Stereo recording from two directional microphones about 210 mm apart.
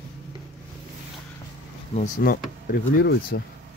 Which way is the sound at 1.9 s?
40° left (ahead or behind).